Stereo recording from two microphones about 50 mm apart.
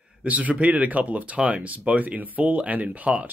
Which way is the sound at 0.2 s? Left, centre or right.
Right.